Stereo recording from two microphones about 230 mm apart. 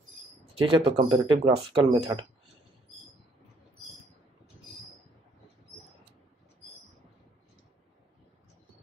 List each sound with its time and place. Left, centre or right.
0.7 s speech: right